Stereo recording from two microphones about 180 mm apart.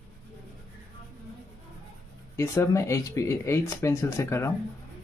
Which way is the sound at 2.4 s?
15° left (ahead or behind).